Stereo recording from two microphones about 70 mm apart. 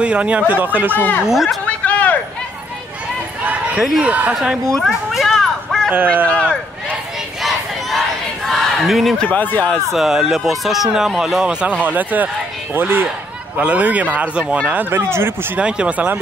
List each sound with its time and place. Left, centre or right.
0.0 s speech: centre
0.9 s speech: left
1.2 s speech: centre
1.7 s a sound: left
4.0 s speech: right
4.7 s a sound: centre
5.9 s speech: right
8.5 s battle cry: centre
9.3 s speech: left
9.9 s speech: centre
11.8 s speech: right
15.5 s speech: centre